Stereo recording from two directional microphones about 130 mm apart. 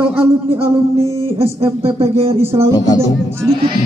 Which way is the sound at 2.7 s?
30° left (ahead or behind).